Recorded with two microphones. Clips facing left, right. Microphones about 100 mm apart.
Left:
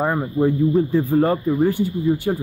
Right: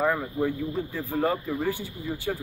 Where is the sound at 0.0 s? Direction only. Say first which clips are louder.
Left 6 dB; 30° left (ahead or behind).